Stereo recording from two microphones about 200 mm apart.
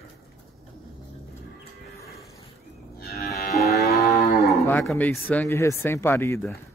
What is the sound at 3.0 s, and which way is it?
Livestock, 50° left (ahead or behind).